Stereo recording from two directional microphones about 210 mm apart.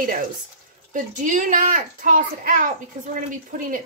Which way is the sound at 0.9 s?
40° right (ahead or behind).